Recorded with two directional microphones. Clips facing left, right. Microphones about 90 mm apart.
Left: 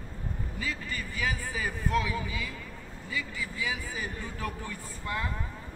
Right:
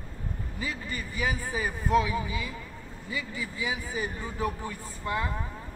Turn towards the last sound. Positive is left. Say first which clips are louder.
# right 3 dB
turn(degrees=-20)  # may be behind; listen again after turning